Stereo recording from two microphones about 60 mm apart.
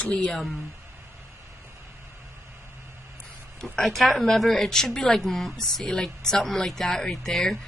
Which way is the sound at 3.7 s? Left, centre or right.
Centre.